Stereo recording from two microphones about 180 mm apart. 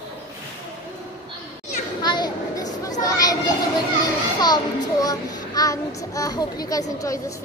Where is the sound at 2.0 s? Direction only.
25° left (ahead or behind).